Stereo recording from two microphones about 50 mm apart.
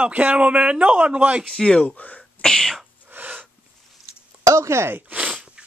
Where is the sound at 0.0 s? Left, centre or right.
Right.